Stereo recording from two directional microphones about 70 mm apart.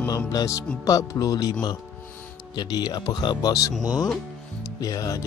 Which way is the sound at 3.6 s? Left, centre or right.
Left.